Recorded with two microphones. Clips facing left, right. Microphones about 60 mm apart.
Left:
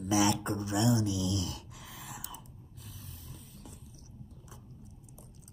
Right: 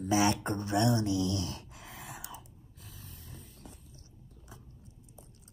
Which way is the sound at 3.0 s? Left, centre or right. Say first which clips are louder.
Left 1 dB; right.